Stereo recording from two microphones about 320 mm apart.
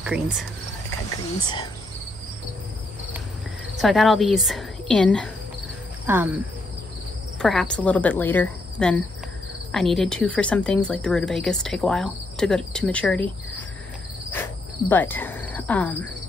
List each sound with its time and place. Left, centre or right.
0.0 s a woman's voice: centre
1.4 s speech: centre
3.7 s a woman's voice: centre
14.3 s cricket: centre